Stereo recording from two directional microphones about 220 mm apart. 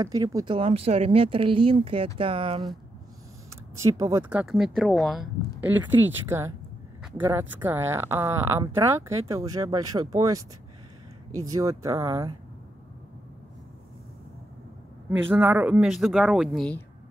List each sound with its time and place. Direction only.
0.0 s speech: 15° right (ahead or behind)
3.8 s speech: 15° right (ahead or behind)
11.4 s speech: 15° right (ahead or behind)
15.0 s speech: 10° right (ahead or behind)